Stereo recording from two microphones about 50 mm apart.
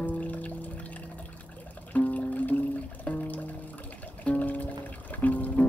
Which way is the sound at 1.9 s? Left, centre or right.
Left.